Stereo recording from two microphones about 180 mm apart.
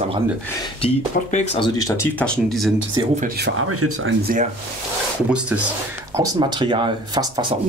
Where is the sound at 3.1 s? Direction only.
55° right (ahead or behind).